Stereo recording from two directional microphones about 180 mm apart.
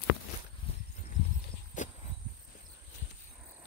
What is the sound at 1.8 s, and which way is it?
Cricket, 45° left (ahead or behind).